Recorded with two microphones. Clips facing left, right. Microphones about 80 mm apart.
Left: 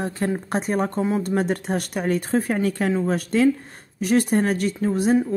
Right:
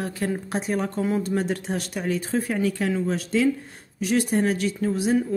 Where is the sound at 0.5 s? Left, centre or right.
Left.